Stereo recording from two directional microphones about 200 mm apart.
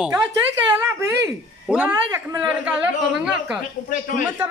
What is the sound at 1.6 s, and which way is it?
A man's voice, 5° right (ahead or behind).